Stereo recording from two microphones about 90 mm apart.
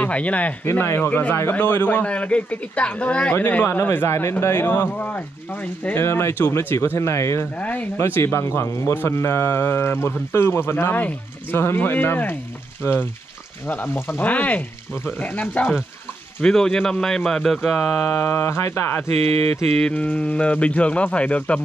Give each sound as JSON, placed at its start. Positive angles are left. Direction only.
{"t": 0.0, "sound": "speech", "side_deg": 15}
{"t": 0.7, "sound": "a man's voice", "side_deg": 25}
{"t": 7.5, "sound": "speech", "side_deg": 20}
{"t": 8.0, "sound": "a man's voice", "side_deg": 30}
{"t": 13.7, "sound": "a man's voice", "side_deg": 25}
{"t": 16.3, "sound": "speech", "side_deg": 5}
{"t": 18.1, "sound": "a man's voice", "side_deg": 25}